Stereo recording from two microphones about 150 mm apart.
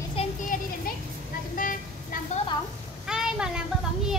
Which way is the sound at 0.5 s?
60° left (ahead or behind).